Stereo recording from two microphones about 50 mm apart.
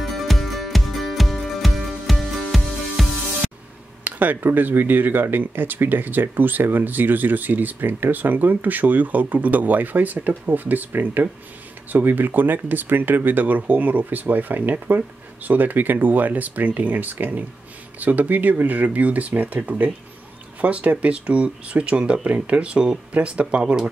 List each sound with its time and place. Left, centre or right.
0.0 s music: centre
4.0 s speech: right